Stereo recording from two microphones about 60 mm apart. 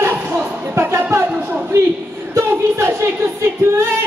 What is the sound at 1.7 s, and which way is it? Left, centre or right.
Speech, right.